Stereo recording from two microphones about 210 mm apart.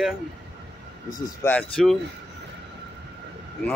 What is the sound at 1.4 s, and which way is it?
Speech, 5° left (ahead or behind).